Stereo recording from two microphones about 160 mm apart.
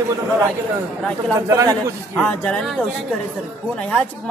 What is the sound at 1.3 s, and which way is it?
Speech, 20° right (ahead or behind).